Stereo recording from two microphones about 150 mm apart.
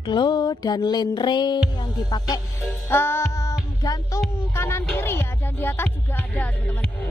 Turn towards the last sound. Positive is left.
turn(degrees=10)  # may be behind; listen again after turning